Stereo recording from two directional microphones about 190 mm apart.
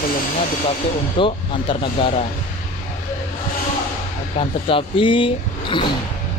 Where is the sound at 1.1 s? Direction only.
25° left (ahead or behind).